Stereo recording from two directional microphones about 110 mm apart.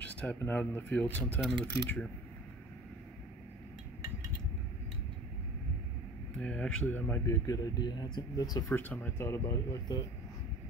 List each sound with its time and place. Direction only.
0.0 s speech: 15° left (ahead or behind)
6.4 s speech: 10° left (ahead or behind)
7.4 s speech: 30° left (ahead or behind)
8.6 s speech: 20° left (ahead or behind)